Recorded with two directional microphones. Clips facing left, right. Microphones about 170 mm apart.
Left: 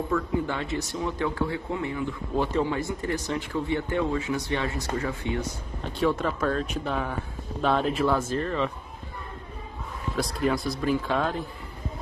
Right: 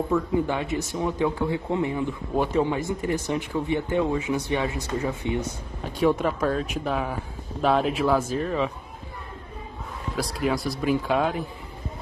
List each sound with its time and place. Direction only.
0.1 s speech: 15° right (ahead or behind)
10.1 s speech: 5° right (ahead or behind)